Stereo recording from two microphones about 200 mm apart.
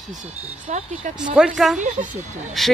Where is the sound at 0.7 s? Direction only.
35° right (ahead or behind).